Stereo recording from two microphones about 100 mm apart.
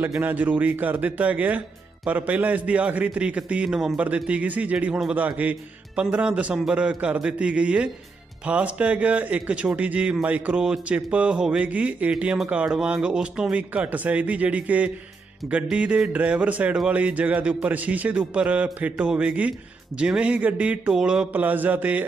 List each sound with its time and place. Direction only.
0.2 s a man's voice: 15° right (ahead or behind)